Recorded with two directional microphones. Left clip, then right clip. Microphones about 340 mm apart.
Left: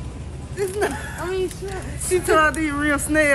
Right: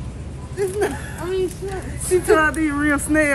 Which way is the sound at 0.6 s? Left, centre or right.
Centre.